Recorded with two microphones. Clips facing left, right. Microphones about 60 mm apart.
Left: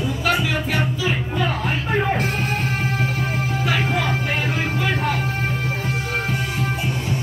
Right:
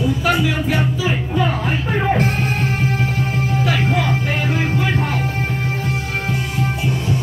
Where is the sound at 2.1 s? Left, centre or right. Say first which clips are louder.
Right 4 dB; right.